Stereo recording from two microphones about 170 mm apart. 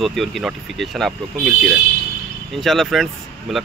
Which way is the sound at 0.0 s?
Centre (ahead or behind).